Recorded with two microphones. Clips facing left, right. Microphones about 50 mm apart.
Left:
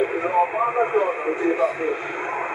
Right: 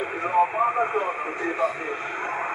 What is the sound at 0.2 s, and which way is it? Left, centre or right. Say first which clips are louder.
Speech: right 4 dB; centre.